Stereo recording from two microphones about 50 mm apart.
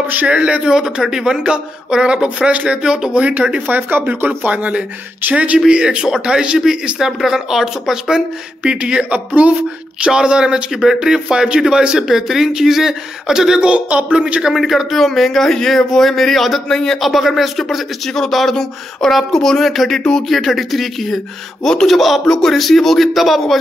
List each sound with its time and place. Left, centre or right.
0.3 s speech: right
0.7 s speech: centre
2.8 s speech: centre
3.1 s speech: right
3.6 s speech: right; by 9.0 s centre
9.1 s speech: right; by 13.7 s centre
13.7 s speech: right
14.1 s speech: centre
14.5 s speech: centre
20.0 s speech: centre
20.2 s speech: centre